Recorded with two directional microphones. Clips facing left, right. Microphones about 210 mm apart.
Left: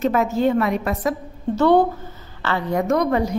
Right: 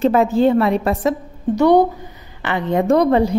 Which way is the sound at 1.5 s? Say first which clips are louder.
Right 3 dB; 15° right (ahead or behind).